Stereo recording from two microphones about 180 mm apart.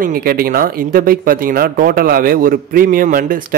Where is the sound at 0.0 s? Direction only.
55° right (ahead or behind).